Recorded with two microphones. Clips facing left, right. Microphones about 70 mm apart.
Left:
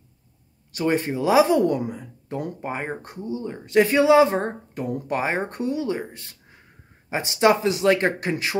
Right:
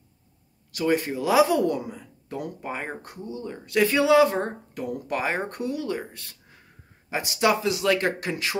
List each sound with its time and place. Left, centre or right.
0.7 s speech: left